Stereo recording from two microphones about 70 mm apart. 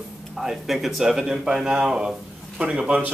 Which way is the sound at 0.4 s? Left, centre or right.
Centre.